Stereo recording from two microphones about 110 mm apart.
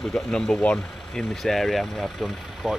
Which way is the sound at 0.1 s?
10° left (ahead or behind).